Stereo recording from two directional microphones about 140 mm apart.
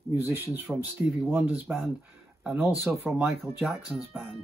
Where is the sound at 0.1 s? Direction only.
15° right (ahead or behind).